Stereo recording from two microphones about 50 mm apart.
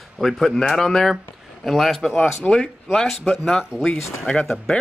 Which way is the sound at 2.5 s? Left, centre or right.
Centre.